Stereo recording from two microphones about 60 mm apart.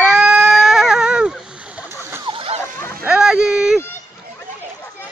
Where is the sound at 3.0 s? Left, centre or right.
Centre.